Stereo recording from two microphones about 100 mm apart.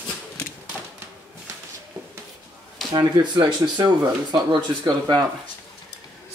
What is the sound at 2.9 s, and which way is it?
Speech, 50° right (ahead or behind).